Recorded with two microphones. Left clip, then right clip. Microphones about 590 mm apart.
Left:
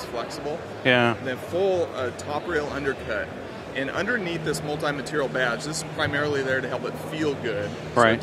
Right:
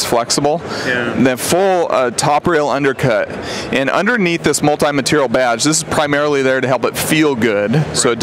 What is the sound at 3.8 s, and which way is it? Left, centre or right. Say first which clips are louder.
Speech: right 11 dB; right.